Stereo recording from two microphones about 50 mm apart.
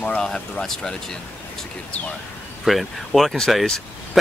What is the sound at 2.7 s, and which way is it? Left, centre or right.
Speech, centre.